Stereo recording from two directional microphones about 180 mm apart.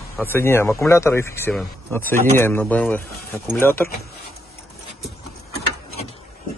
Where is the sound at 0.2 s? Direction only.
15° left (ahead or behind).